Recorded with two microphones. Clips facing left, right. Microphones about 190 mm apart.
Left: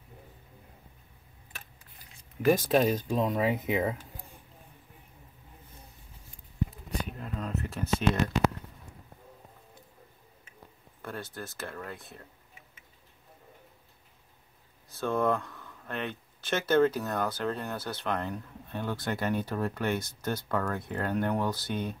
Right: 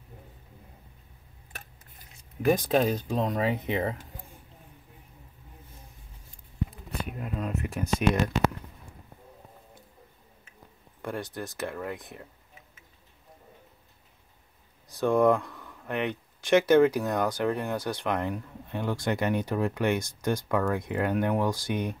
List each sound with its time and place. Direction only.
2.4 s speech: centre (ahead or behind)
7.1 s a sound: 10° right (ahead or behind)
11.0 s speech: 15° right (ahead or behind)
14.9 s speech: 15° right (ahead or behind)